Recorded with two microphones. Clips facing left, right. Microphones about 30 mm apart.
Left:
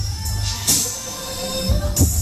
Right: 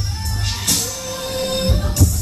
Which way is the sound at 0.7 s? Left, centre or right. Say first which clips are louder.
Even; centre.